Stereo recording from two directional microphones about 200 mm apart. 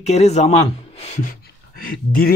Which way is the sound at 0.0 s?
35° left (ahead or behind).